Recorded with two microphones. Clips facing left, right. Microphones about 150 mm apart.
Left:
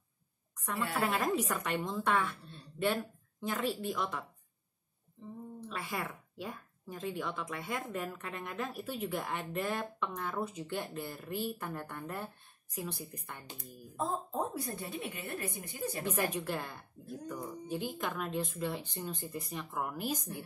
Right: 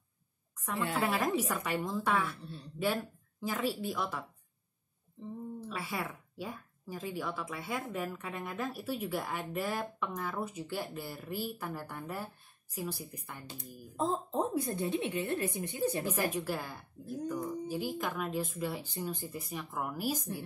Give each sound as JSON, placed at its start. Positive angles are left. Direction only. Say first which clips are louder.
{"t": 1.0, "sound": "a woman's voice", "louder": "even", "side_deg": 0}
{"t": 5.7, "sound": "a woman's voice", "louder": "left 1 dB", "side_deg": -5}
{"t": 13.6, "sound": "a woman's voice", "louder": "right 3 dB", "side_deg": -20}
{"t": 16.1, "sound": "a woman's voice", "louder": "right 1 dB", "side_deg": -5}